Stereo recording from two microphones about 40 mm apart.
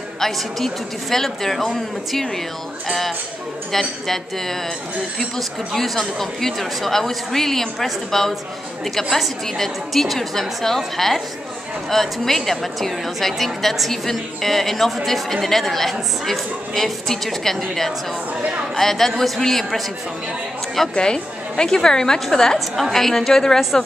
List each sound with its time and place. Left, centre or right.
0.2 s a woman's voice: centre
18.8 s speech: centre
20.9 s speech: centre
22.8 s speech: centre